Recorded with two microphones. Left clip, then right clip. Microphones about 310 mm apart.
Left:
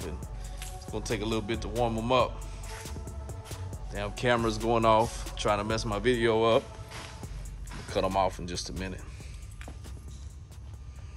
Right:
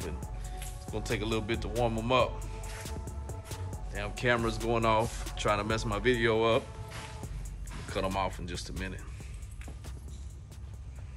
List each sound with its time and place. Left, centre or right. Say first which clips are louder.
0.0 s music: even; centre
3.9 s speech: left 2 dB; centre
7.9 s speech: left 5 dB; centre